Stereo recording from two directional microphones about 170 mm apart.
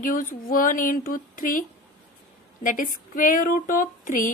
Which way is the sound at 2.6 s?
55° left (ahead or behind).